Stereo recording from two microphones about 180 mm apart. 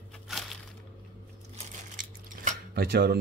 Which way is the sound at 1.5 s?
45° right (ahead or behind).